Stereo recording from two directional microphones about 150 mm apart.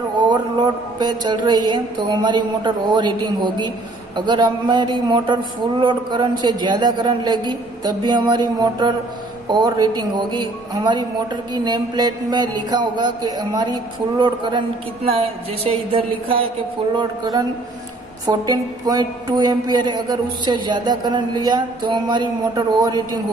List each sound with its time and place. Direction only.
0.9 s a woman's voice: 30° right (ahead or behind)
16.9 s a woman's voice: 25° right (ahead or behind)